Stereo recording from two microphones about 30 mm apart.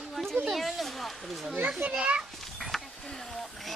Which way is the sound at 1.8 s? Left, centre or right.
Right.